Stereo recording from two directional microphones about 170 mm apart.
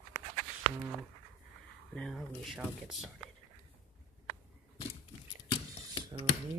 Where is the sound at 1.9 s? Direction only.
Centre (ahead or behind).